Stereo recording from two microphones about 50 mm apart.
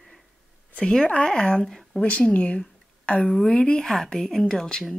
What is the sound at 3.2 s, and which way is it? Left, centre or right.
Speech, centre.